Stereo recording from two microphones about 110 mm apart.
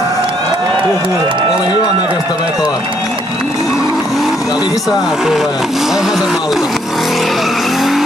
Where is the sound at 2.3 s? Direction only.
35° left (ahead or behind).